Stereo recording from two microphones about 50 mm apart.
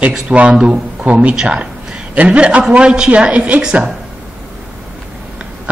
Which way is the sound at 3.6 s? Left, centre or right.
Centre.